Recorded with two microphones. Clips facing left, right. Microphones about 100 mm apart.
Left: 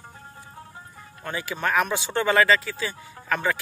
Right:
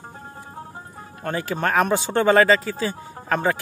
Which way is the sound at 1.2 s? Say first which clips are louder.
Right 4 dB; 40° right (ahead or behind).